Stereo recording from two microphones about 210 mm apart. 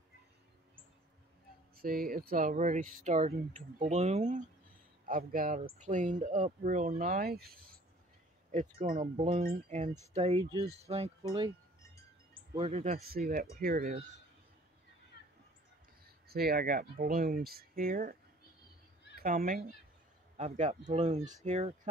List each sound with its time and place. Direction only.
1.8 s speech: 45° right (ahead or behind); by 11.1 s 30° right (ahead or behind)
12.5 s speech: 30° right (ahead or behind)
13.0 s speech: 45° right (ahead or behind)
16.3 s speech: 45° right (ahead or behind)
19.1 s speech: 40° right (ahead or behind)